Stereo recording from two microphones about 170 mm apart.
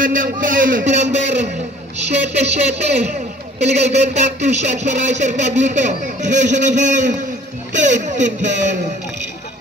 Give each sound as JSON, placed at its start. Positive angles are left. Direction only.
{"t": 0.0, "sound": "speech", "side_deg": -55}
{"t": 2.3, "sound": "a sound", "side_deg": -40}
{"t": 3.5, "sound": "speech", "side_deg": -40}